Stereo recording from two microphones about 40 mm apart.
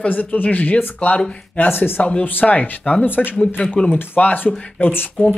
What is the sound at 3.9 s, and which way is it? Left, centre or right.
Speech, left.